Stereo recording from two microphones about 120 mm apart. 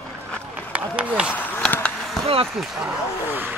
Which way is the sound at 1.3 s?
10° left (ahead or behind).